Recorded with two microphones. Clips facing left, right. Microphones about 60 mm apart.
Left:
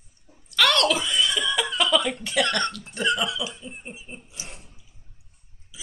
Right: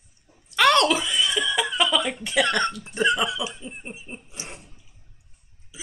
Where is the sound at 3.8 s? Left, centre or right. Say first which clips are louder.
Right 2 dB; right.